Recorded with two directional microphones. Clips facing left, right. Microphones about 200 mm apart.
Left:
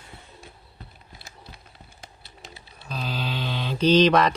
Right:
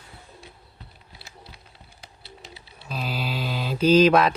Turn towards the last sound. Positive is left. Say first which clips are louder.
# right 1 dB
turn(degrees=-5)  # may be behind; listen again after turning